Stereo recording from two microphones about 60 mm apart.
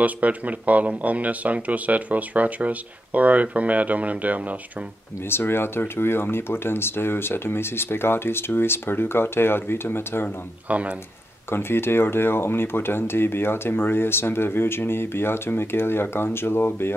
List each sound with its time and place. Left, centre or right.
0.0 s speech: right
5.3 s speech: left
10.7 s speech: right
11.5 s speech: left